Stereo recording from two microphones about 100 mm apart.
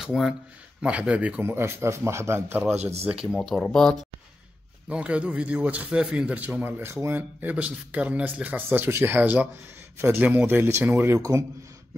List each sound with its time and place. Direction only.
0.0 s a man's voice: 5° right (ahead or behind)
1.4 s speech: 25° right (ahead or behind)
2.7 s speech: 90° right
3.1 s speech: 5° right (ahead or behind)
3.3 s speech: 5° left (ahead or behind)
4.8 s a man's voice: 10° right (ahead or behind)